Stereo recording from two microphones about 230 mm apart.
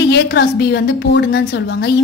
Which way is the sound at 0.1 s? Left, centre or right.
Left.